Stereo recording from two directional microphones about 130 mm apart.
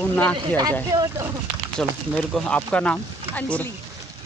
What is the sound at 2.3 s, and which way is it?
Speech, 10° left (ahead or behind).